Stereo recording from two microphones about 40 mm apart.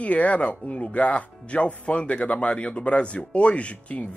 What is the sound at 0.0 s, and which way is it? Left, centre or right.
Speech, left.